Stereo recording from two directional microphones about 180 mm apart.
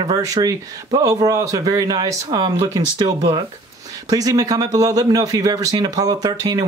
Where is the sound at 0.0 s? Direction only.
20° right (ahead or behind).